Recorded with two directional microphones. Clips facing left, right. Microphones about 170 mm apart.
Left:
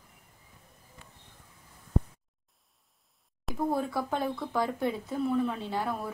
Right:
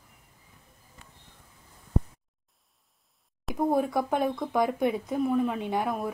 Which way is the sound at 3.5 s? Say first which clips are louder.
Right 4 dB; 15° right (ahead or behind).